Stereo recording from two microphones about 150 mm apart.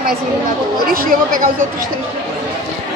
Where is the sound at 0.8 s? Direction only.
75° right (ahead or behind).